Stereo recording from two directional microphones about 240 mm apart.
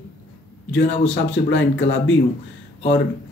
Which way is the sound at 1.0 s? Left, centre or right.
Left.